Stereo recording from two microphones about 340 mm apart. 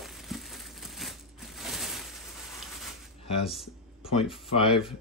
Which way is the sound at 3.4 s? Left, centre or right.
Centre.